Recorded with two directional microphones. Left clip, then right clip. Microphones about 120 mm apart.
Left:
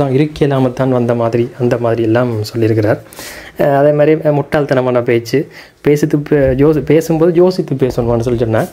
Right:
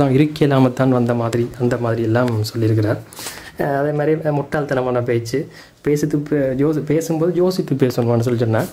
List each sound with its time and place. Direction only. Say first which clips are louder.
0.0 s speech: left 3 dB; centre (ahead or behind)
1.0 s speech: left 6 dB; 20° left (ahead or behind)
2.7 s speech: left 7 dB; 35° left (ahead or behind)
7.8 s speech: left 4 dB; centre (ahead or behind)